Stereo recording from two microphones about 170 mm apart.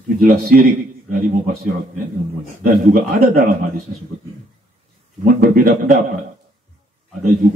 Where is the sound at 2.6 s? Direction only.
60° right (ahead or behind).